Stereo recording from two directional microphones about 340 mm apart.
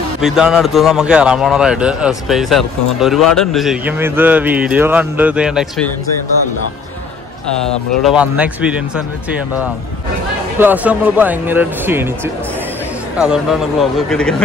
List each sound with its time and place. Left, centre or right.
0.2 s a man's voice: centre
7.6 s a man's voice: centre
10.6 s a man's voice: centre
13.2 s a man's voice: centre